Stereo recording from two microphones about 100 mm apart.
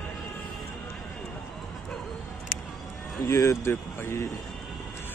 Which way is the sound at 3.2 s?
30° left (ahead or behind).